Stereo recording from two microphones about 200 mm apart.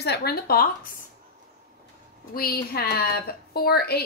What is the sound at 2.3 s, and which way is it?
A woman's voice, 50° left (ahead or behind).